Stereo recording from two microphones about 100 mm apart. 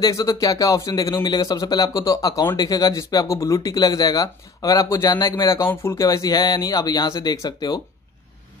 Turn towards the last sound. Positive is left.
turn(degrees=40)  # may be behind; listen again after turning